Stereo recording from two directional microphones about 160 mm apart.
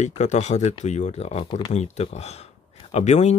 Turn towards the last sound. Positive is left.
turn(degrees=45)  # may be behind; listen again after turning